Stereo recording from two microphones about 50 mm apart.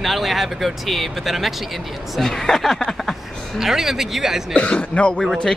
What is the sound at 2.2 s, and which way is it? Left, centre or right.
Speech, centre.